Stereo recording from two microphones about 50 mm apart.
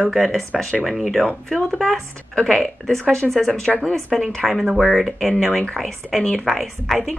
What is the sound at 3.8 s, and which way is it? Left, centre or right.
A woman's voice, centre.